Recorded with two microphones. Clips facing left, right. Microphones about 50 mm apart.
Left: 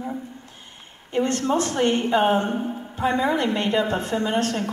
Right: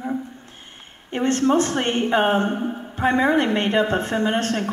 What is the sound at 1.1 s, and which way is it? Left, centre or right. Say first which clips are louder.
Speech: right 3 dB; right.